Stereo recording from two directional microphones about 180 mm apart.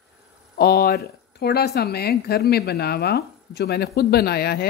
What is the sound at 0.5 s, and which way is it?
A woman's voice, 60° left (ahead or behind).